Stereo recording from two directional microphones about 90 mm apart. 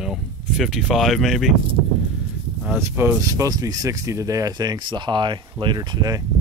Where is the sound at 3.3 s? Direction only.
40° right (ahead or behind).